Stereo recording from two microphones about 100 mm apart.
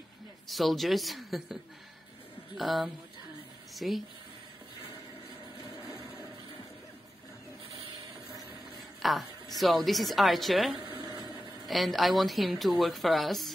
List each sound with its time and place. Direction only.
0.5 s a woman's voice: centre (ahead or behind)
9.0 s a woman's voice: centre (ahead or behind)
10.8 s a sound: 50° right (ahead or behind)
11.6 s a woman's voice: centre (ahead or behind)